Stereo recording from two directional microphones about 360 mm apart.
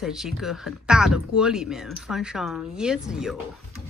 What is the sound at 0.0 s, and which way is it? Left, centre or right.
Speech, centre.